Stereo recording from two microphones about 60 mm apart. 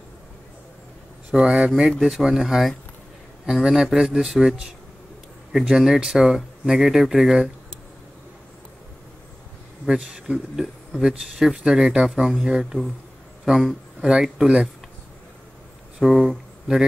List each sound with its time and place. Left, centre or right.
1.3 s speech: right
1.8 s speech: centre
10.1 s speech: centre
16.0 s speech: centre